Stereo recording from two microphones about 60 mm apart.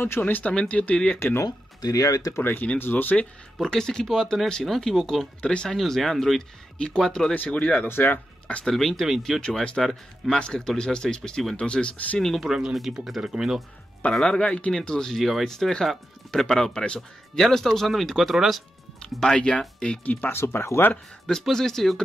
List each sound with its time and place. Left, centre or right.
0.2 s speech: left
1.4 s speech: left
2.5 s speech: left
3.5 s speech: centre
7.3 s speech: left
7.9 s speech: left
8.6 s speech: centre
9.4 s speech: centre
12.4 s speech: centre
14.2 s speech: centre
18.9 s music: centre
19.3 s speech: centre
20.1 s speech: left
21.3 s speech: centre